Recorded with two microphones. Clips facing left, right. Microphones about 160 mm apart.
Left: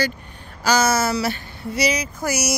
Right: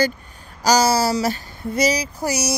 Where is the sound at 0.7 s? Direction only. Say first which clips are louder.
Right 2 dB; 35° right (ahead or behind).